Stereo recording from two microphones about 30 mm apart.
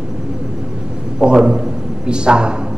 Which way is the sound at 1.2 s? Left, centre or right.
Right.